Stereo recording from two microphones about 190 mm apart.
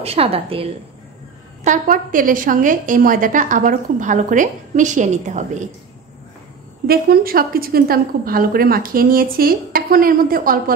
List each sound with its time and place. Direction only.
0.0 s a woman's voice: 30° right (ahead or behind)
1.6 s a woman's voice: 45° right (ahead or behind)
6.9 s a woman's voice: 50° right (ahead or behind)